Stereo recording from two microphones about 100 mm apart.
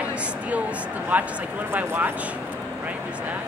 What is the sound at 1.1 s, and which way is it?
Speech, 15° right (ahead or behind).